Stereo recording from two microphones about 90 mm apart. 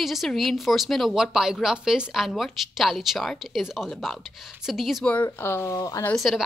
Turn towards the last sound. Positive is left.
turn(degrees=0)  # may be behind; listen again after turning